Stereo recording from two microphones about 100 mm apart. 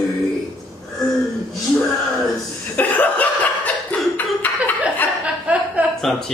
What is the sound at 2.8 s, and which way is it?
Laughter, 15° left (ahead or behind).